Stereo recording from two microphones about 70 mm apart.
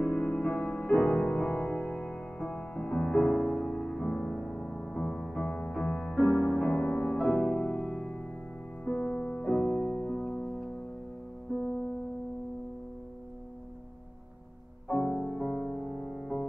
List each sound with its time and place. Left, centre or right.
0.0 s music: left; by 6.1 s centre
6.1 s keyboard: centre
6.7 s music: centre
9.7 s music: centre
14.9 s music: centre